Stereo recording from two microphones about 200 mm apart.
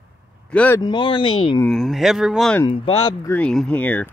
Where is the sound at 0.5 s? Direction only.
5° left (ahead or behind).